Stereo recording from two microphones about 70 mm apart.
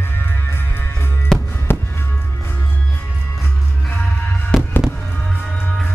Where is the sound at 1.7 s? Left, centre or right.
Left.